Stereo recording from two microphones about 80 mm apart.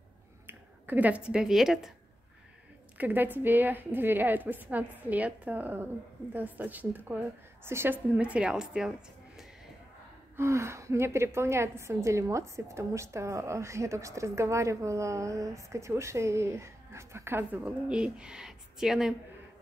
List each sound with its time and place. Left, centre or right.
0.5 s speech: right; by 1.9 s centre
3.0 s a woman's voice: right
8.2 s speech: centre
10.3 s a woman's voice: right
17.6 s speech: centre